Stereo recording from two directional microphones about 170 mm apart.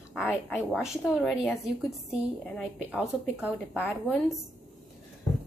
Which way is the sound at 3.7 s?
10° left (ahead or behind).